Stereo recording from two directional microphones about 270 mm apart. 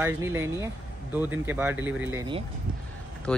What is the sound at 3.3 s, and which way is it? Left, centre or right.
Speech, centre.